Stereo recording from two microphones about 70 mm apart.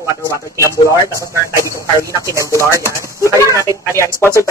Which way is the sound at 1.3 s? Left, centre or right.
Right.